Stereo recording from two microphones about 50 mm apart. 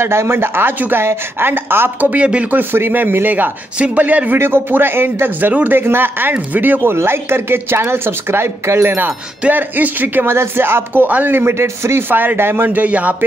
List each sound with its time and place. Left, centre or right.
0.0 s speech: right
2.0 s speech: right
4.4 s speech: right
5.5 s speech: right
5.8 s speech: right
7.1 s speech: right
9.5 s speech: right
10.3 s speech: right
11.1 s speech: right
11.3 s a man's voice: right
12.1 s speech: right
12.6 s speech: right